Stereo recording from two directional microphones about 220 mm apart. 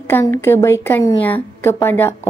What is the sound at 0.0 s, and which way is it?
A woman's voice, 10° left (ahead or behind).